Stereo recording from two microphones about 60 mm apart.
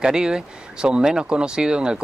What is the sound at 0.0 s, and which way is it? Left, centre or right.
Speech, centre.